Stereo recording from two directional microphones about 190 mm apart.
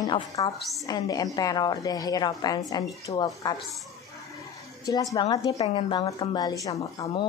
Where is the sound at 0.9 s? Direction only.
20° left (ahead or behind).